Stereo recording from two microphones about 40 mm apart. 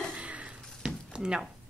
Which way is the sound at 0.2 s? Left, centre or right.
Right.